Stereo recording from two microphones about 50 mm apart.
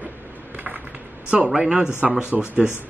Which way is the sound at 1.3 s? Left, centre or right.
Right.